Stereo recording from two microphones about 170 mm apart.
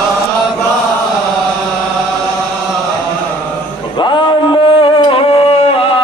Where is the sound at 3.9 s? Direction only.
25° left (ahead or behind).